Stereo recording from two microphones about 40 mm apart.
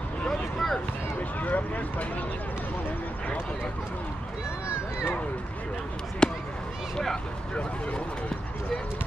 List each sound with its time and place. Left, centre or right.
0.3 s vehicle: centre
1.4 s speech: left
6.2 s speech: left